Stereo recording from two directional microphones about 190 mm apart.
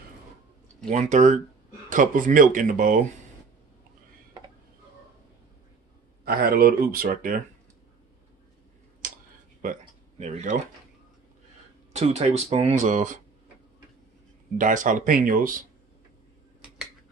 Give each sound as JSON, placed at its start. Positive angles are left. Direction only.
{"t": 0.8, "sound": "speech", "side_deg": -40}
{"t": 6.2, "sound": "speech", "side_deg": -55}
{"t": 9.6, "sound": "a sound", "side_deg": -40}
{"t": 11.9, "sound": "speech", "side_deg": -35}
{"t": 14.6, "sound": "speech", "side_deg": -45}